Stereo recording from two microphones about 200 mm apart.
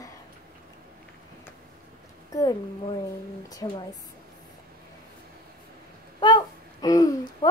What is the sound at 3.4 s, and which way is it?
Speech, 20° left (ahead or behind).